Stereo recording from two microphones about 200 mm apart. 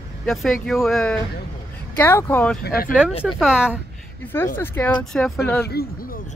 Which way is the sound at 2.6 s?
50° left (ahead or behind).